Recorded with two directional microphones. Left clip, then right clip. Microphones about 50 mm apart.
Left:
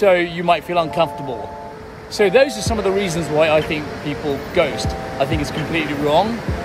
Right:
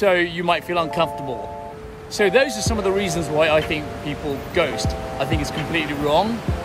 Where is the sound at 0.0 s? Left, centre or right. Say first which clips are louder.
Left 3 dB; right.